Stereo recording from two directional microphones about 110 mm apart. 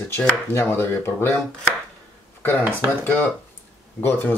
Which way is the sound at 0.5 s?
20° left (ahead or behind).